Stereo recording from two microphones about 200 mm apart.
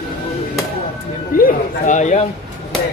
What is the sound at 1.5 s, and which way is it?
Speech, 40° left (ahead or behind).